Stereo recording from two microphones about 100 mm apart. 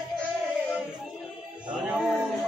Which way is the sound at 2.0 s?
Centre (ahead or behind).